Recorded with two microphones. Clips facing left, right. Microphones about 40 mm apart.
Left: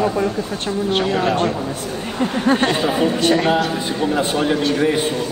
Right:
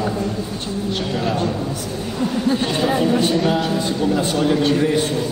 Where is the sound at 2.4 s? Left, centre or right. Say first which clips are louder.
Left 5 dB; left.